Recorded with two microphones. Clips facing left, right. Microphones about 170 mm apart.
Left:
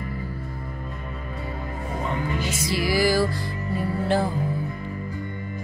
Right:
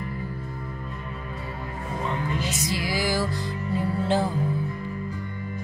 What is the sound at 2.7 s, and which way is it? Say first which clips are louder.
Music: left 7 dB; 20° right (ahead or behind).